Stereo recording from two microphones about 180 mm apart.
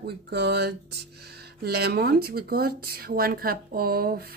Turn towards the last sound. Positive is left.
turn(degrees=-55)  # may be behind; listen again after turning